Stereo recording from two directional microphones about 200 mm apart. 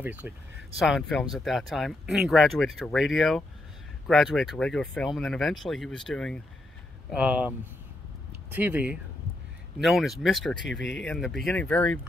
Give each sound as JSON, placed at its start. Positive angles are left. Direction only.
{"t": 0.0, "sound": "speech", "side_deg": -10}
{"t": 10.7, "sound": "speech", "side_deg": 65}
{"t": 11.0, "sound": "speech", "side_deg": 5}